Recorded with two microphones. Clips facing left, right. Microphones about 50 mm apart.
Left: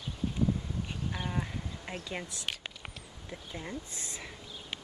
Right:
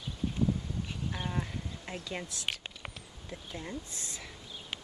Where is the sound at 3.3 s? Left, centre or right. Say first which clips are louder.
Even; centre.